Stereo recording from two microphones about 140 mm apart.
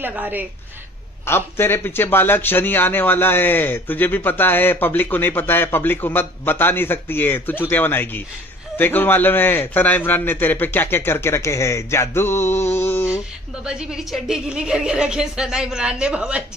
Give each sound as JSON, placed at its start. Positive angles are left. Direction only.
{"t": 0.0, "sound": "a woman's voice", "side_deg": -15}
{"t": 1.2, "sound": "speech", "side_deg": 15}
{"t": 13.7, "sound": "a woman's voice", "side_deg": -5}